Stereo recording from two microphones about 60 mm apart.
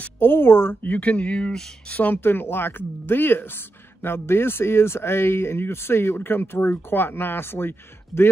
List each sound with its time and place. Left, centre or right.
0.0 s speech: left
0.8 s speech: left
1.9 s speech: left